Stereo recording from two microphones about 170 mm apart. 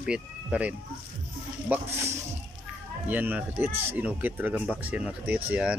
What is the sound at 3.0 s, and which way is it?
Speech, 10° right (ahead or behind).